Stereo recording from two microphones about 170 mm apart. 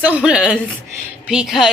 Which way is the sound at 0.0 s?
5° right (ahead or behind).